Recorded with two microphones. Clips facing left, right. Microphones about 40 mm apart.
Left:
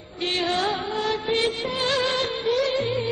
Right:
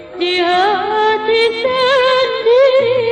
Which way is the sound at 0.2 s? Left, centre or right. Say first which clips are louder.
Right 11 dB; right.